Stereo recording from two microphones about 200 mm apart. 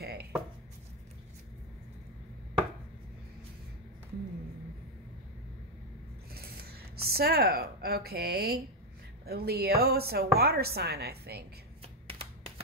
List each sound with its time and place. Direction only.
0.0 s chopping: 50° right (ahead or behind)
6.3 s a sound: 50° right (ahead or behind)
9.2 s a woman's voice: 50° right (ahead or behind)
12.1 s typewriter: 25° right (ahead or behind)